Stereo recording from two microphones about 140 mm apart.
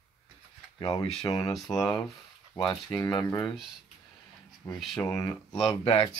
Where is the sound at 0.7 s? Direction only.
30° left (ahead or behind).